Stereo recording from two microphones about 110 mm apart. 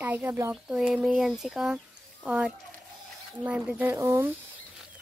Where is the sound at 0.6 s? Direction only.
5° right (ahead or behind).